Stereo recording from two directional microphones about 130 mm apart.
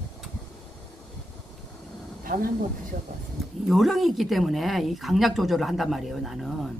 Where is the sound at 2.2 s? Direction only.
90° right.